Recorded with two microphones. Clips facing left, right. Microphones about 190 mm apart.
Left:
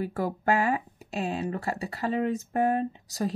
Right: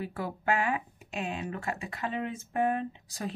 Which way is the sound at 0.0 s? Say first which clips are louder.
Left 5 dB; 40° left (ahead or behind).